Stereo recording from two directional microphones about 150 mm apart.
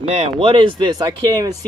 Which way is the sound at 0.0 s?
45° right (ahead or behind).